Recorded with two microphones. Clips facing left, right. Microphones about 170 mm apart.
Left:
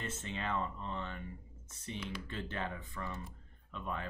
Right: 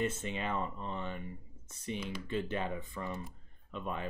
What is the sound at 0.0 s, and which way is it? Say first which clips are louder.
Speech: right 6 dB; 15° right (ahead or behind).